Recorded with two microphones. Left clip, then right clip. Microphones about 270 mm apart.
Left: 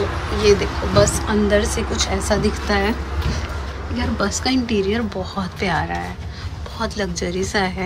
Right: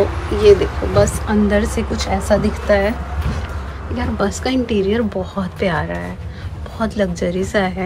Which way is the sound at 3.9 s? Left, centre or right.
Centre.